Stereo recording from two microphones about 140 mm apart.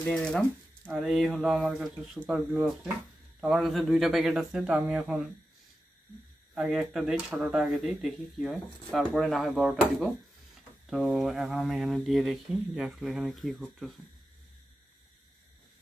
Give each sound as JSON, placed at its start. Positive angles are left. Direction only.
{"t": 0.0, "sound": "speech", "side_deg": 5}
{"t": 6.5, "sound": "speech", "side_deg": -5}